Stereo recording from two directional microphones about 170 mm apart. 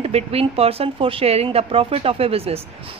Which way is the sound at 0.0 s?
35° right (ahead or behind).